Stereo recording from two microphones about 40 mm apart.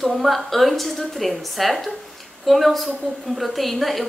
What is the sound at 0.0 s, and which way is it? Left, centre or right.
A woman's voice, centre.